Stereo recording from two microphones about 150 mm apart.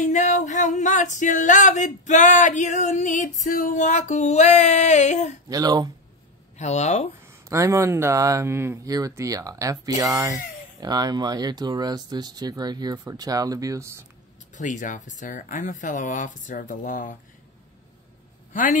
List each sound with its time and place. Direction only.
0.0 s music: 55° left (ahead or behind)
5.5 s speech: 25° right (ahead or behind)
6.6 s music: 50° left (ahead or behind)
7.4 s speech: 20° right (ahead or behind)
14.5 s speech: 55° left (ahead or behind)
18.5 s a man's voice: 60° left (ahead or behind)